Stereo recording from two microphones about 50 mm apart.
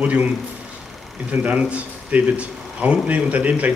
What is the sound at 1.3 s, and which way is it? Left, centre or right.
Speech, right.